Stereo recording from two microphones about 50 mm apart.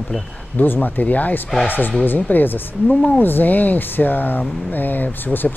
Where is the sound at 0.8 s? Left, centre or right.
Left.